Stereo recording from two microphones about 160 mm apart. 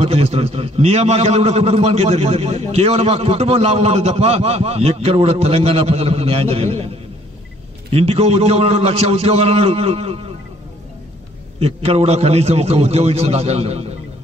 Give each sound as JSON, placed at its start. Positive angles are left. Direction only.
{"t": 0.0, "sound": "a man's voice", "side_deg": -40}
{"t": 7.9, "sound": "a man's voice", "side_deg": -40}
{"t": 11.6, "sound": "a man's voice", "side_deg": -40}